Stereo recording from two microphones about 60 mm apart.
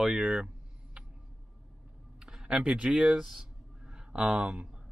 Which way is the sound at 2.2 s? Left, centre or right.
Centre.